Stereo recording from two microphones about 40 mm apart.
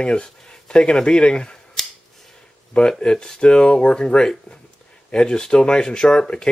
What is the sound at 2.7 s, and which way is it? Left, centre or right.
Speech, left.